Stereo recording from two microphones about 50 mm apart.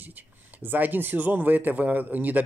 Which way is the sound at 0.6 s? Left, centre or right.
Right.